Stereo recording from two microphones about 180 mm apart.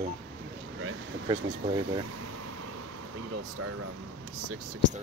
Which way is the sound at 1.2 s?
25° right (ahead or behind).